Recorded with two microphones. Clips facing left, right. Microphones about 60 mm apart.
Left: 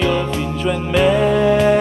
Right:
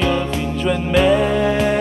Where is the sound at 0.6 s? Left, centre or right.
Centre.